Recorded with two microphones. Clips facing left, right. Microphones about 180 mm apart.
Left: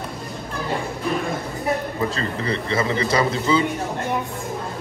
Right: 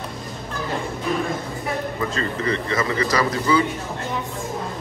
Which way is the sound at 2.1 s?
30° left (ahead or behind).